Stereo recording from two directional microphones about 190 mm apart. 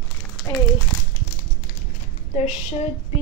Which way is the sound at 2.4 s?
35° left (ahead or behind).